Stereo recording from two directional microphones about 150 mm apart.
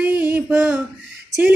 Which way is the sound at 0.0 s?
10° right (ahead or behind).